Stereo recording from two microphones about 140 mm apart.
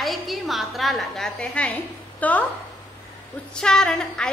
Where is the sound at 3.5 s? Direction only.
5° left (ahead or behind).